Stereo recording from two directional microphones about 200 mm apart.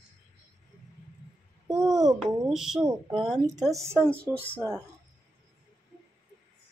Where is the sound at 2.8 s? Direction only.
20° right (ahead or behind).